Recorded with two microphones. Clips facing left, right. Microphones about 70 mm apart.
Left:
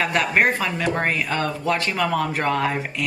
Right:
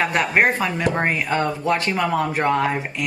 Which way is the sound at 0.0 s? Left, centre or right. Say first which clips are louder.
Right 1 dB; centre.